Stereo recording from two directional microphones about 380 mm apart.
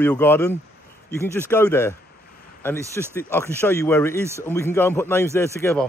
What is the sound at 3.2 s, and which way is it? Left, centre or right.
Speech, centre.